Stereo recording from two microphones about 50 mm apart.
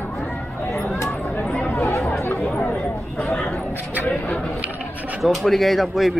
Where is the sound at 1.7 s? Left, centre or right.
Left.